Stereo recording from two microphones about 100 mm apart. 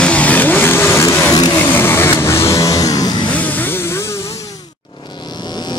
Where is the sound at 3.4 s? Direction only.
20° left (ahead or behind).